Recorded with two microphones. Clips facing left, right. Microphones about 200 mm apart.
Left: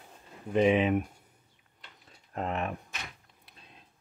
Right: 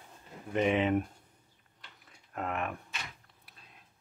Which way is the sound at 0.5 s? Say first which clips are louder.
Left 3 dB; 15° left (ahead or behind).